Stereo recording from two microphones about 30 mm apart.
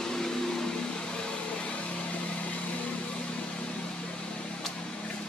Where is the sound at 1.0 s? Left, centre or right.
Left.